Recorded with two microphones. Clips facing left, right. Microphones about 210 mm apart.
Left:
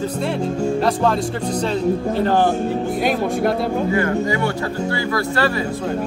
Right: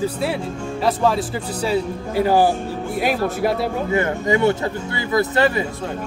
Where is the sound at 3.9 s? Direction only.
25° right (ahead or behind).